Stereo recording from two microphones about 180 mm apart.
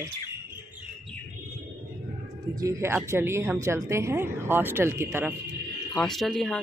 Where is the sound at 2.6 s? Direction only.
15° right (ahead or behind).